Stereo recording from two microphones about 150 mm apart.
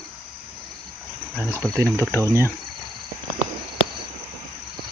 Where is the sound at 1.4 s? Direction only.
15° right (ahead or behind).